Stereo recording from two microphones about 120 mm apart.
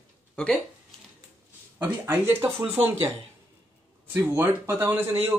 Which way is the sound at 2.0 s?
25° right (ahead or behind).